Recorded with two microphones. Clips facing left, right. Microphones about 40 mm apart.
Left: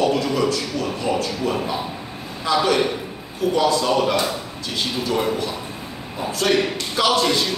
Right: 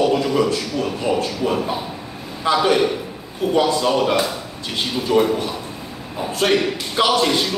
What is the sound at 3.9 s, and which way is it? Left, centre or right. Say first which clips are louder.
Speech: right 1 dB; centre.